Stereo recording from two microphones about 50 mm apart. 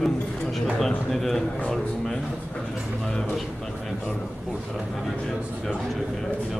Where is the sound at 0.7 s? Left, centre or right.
Centre.